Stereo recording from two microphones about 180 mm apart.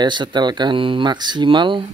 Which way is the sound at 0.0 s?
25° right (ahead or behind).